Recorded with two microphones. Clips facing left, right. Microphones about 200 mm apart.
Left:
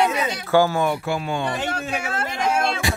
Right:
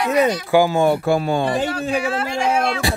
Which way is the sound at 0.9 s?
45° right (ahead or behind).